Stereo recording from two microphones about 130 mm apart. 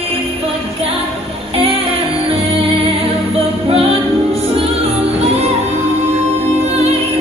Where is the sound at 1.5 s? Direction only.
50° right (ahead or behind).